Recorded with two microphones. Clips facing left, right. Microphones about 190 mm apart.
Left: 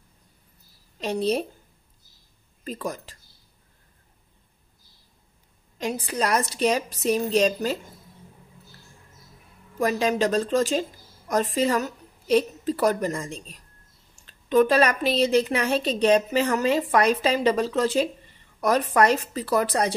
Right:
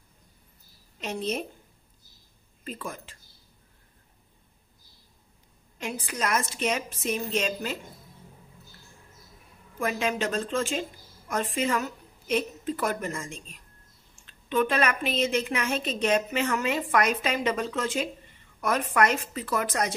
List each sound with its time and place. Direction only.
0.9 s a woman's voice: 35° left (ahead or behind)
2.6 s a woman's voice: 40° left (ahead or behind)
5.8 s a woman's voice: 35° left (ahead or behind)
9.8 s a woman's voice: 35° left (ahead or behind)